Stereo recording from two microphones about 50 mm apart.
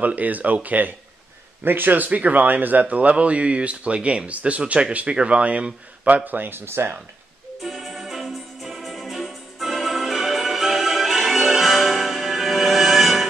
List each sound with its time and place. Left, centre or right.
0.0 s a man's voice: right
7.6 s music: centre